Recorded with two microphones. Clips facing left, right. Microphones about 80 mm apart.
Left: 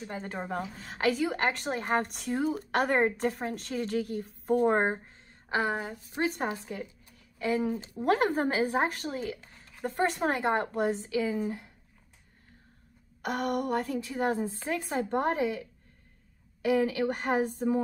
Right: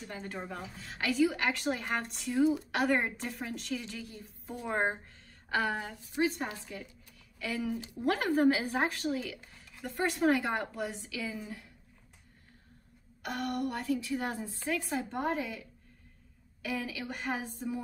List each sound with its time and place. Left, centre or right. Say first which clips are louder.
0.0 s a woman's voice: left 4 dB; left
2.0 s a woman's voice: right 2 dB; left
5.0 s a sound: left 2 dB; left
6.1 s a woman's voice: left 1 dB; left
6.5 s a woman's voice: left 6 dB; left
13.2 s a woman's voice: left 4 dB; left
14.9 s a woman's voice: left 8 dB; left
16.8 s a woman's voice: left 9 dB; left